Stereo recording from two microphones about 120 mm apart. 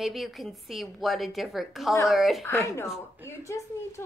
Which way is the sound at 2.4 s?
25° left (ahead or behind).